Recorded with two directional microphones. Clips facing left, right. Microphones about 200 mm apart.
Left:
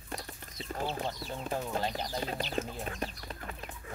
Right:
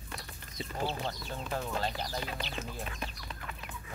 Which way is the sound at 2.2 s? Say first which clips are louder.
Left 5 dB; 40° left (ahead or behind).